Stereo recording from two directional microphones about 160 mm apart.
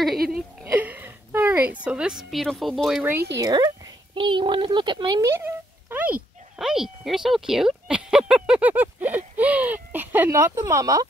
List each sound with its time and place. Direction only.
0.7 s a sound: 10° right (ahead or behind)
1.9 s speech: 5° right (ahead or behind)
3.0 s speech: 15° right (ahead or behind)
3.3 s a child's voice: 25° right (ahead or behind)